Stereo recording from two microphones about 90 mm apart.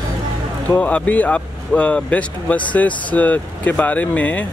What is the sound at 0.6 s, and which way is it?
Speech, 15° left (ahead or behind).